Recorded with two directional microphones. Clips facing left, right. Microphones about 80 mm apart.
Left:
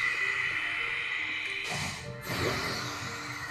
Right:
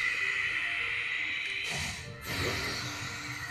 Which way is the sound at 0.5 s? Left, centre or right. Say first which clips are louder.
Left 1 dB; centre.